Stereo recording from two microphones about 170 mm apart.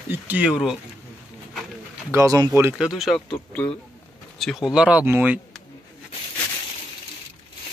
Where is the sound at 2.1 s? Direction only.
20° right (ahead or behind).